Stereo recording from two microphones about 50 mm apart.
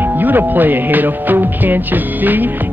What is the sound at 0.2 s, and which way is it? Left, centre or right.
Speech, right.